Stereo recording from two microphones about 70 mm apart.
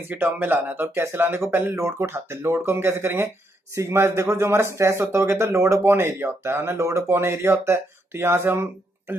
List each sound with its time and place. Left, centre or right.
0.1 s speech: right